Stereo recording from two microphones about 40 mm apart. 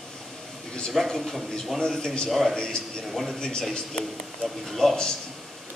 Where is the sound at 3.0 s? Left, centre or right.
Centre.